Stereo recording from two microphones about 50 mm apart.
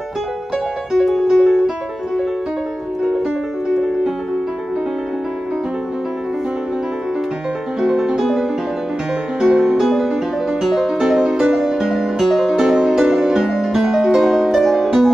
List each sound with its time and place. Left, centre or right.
0.9 s music: centre
3.6 s music: centre
7.8 s music: centre